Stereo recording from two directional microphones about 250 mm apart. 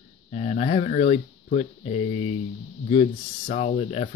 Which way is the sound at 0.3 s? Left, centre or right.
Left.